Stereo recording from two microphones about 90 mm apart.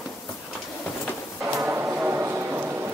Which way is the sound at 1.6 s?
20° right (ahead or behind).